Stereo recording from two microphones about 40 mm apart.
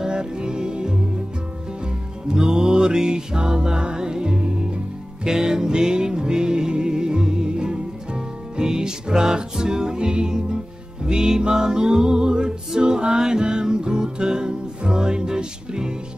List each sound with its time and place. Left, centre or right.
0.0 s music: centre
2.2 s music: centre